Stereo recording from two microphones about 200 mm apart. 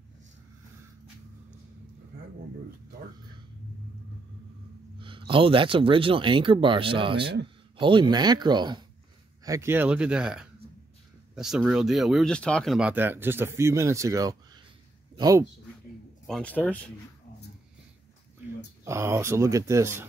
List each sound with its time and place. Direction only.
4.9 s speech: 25° right (ahead or behind)
16.3 s speech: 5° left (ahead or behind)
18.9 s speech: 15° right (ahead or behind)